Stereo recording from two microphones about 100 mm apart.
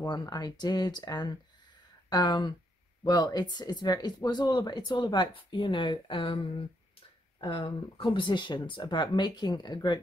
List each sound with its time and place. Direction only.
0.0 s speech: 40° left (ahead or behind)